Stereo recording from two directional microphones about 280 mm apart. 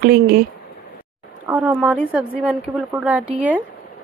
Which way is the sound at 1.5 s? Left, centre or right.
Centre.